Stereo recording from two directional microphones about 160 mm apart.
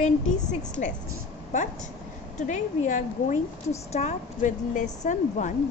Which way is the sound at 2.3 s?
50° left (ahead or behind).